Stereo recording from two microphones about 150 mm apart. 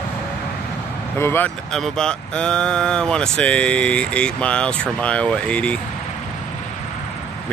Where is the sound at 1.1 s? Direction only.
15° left (ahead or behind).